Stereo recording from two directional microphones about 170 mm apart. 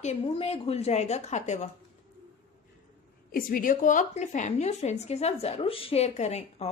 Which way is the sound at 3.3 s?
55° left (ahead or behind).